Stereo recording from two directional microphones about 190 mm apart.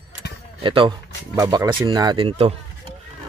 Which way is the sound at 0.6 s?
25° right (ahead or behind).